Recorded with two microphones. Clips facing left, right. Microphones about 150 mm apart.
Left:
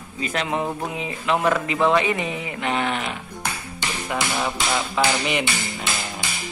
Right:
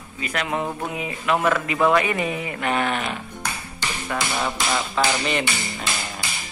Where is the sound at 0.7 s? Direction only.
15° left (ahead or behind).